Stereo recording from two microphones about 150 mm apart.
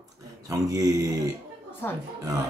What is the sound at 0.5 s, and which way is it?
Speech, 25° right (ahead or behind).